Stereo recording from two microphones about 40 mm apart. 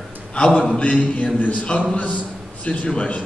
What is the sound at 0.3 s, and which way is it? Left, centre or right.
Speech, left.